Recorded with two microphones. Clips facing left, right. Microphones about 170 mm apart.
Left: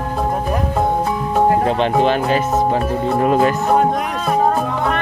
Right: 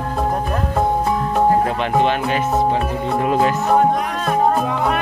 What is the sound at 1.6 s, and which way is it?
Music, 30° left (ahead or behind).